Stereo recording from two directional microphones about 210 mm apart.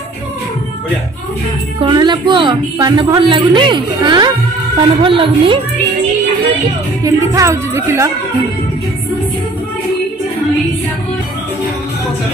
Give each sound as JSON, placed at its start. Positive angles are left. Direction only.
{"t": 1.8, "sound": "speech", "side_deg": -20}
{"t": 7.0, "sound": "speech", "side_deg": -15}